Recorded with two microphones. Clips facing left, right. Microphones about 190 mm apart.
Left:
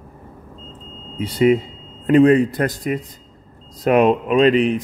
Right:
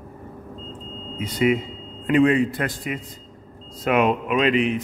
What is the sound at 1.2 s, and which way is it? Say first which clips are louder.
A man's voice: left 5 dB; 35° left (ahead or behind).